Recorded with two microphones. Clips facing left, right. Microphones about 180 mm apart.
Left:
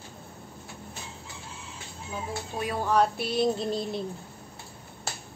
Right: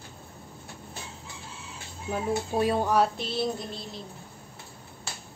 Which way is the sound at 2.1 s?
65° right (ahead or behind).